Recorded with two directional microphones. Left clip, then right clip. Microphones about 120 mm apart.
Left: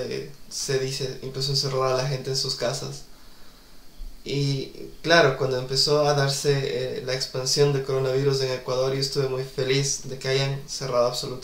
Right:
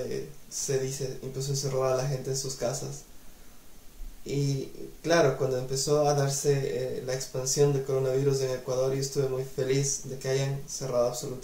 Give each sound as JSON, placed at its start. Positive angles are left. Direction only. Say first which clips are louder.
{"t": 0.7, "sound": "speech", "louder": "left 4 dB", "side_deg": 0}
{"t": 4.3, "sound": "speech", "louder": "left 4 dB", "side_deg": -5}
{"t": 10.8, "sound": "speech", "louder": "left 4 dB", "side_deg": 25}